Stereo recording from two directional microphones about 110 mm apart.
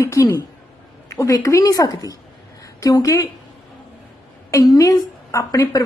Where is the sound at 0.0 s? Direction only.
25° left (ahead or behind).